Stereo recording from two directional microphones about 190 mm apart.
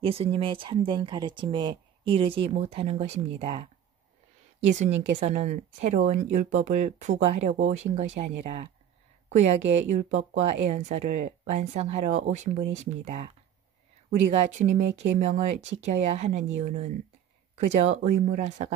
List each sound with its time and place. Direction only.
0.0 s speech: 30° right (ahead or behind)
4.6 s speech: 40° right (ahead or behind)
14.3 s speech: 40° right (ahead or behind)